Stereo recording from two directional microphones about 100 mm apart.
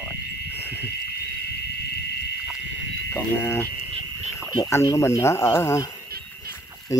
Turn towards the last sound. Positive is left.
turn(degrees=25)  # may be behind; listen again after turning